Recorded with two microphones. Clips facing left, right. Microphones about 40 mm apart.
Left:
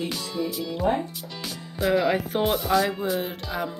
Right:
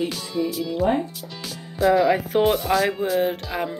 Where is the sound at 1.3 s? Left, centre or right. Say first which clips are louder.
Left 1 dB; centre.